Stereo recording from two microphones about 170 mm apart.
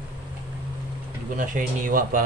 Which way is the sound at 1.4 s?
50° right (ahead or behind).